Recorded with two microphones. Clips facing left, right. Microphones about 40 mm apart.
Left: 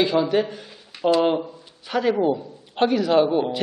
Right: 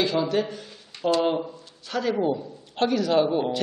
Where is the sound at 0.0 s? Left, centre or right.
Centre.